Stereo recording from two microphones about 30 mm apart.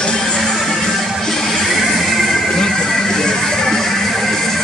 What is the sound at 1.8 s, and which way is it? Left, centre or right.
Music, centre.